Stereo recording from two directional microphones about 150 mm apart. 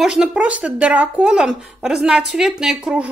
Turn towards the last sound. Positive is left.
turn(degrees=-5)  # may be behind; listen again after turning